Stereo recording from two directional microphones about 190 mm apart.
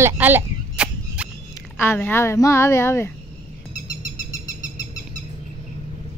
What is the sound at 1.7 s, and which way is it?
A woman's voice, 10° left (ahead or behind).